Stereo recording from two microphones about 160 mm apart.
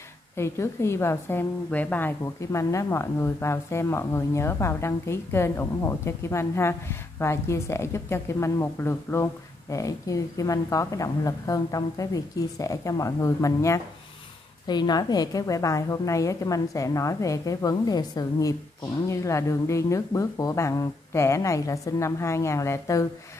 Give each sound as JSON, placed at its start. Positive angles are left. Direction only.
{"t": 0.4, "sound": "a woman's voice", "side_deg": 15}